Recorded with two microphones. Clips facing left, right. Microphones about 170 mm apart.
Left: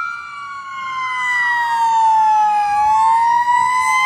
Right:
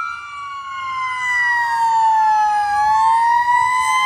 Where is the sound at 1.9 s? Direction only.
20° left (ahead or behind).